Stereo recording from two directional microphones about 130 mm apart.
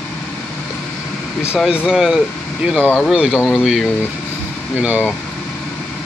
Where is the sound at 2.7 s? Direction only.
10° left (ahead or behind).